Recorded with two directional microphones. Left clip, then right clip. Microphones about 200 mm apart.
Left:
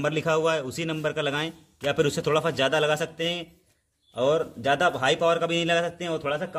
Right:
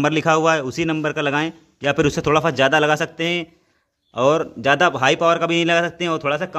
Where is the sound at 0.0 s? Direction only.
40° right (ahead or behind).